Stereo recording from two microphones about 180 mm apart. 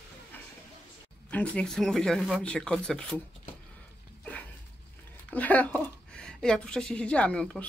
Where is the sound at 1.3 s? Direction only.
5° left (ahead or behind).